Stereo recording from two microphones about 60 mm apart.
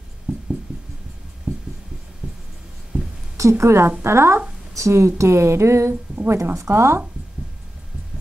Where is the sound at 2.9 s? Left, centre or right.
Right.